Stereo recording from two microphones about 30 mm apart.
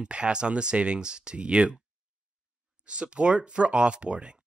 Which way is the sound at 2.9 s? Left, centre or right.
Right.